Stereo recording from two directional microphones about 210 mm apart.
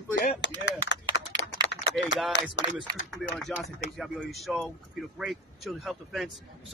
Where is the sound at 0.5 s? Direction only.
60° left (ahead or behind).